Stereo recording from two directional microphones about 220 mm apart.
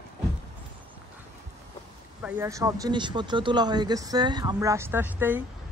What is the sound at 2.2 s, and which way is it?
Speech, 10° right (ahead or behind).